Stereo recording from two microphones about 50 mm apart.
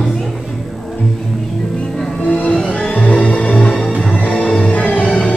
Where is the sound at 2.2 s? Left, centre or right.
Left.